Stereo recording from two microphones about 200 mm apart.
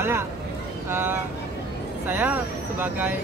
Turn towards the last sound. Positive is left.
turn(degrees=-10)  # may be behind; listen again after turning